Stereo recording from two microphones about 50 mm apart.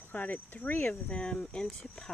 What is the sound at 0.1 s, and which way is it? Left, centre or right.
Speech, left.